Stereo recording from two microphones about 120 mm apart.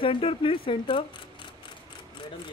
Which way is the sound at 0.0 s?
50° left (ahead or behind).